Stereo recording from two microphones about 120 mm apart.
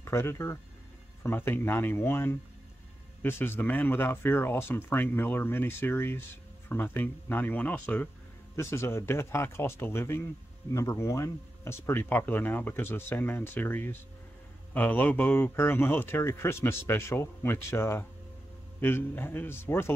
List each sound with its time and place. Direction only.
0.0 s speech: 20° left (ahead or behind)